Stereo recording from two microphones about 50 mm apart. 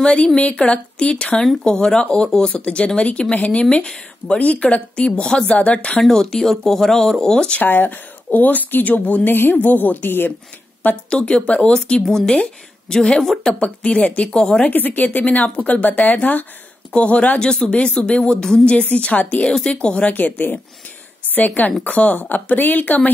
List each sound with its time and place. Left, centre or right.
0.0 s a woman's voice: left
4.4 s speech: left
5.2 s a woman's voice: centre
5.5 s speech: left
6.0 s a woman's voice: centre
7.6 s speech: left
11.1 s speech: left
12.0 s a woman's voice: centre
14.7 s speech: left
16.9 s speech: left
18.8 s speech: left
19.5 s speech: centre
20.2 s speech: left